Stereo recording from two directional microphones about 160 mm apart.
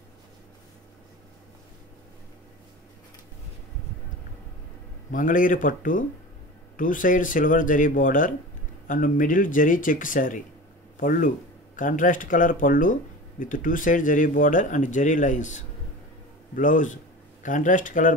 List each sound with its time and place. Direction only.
5.1 s speech: 55° left (ahead or behind)